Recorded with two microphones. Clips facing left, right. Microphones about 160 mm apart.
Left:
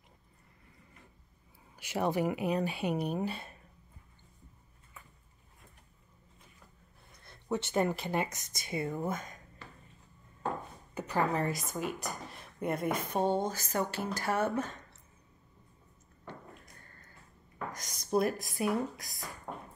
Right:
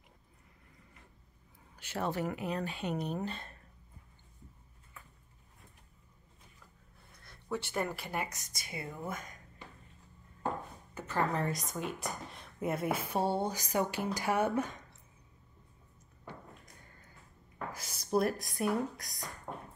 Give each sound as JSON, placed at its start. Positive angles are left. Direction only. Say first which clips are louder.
{"t": 1.8, "sound": "speech", "louder": "left 4 dB", "side_deg": 10}
{"t": 7.2, "sound": "speech", "louder": "left 3 dB", "side_deg": 25}
{"t": 11.3, "sound": "a woman's voice", "louder": "left 2 dB", "side_deg": 5}
{"t": 17.6, "sound": "speech", "louder": "left 1 dB", "side_deg": -5}